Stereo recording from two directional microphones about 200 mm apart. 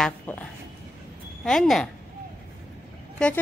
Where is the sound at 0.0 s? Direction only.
5° left (ahead or behind).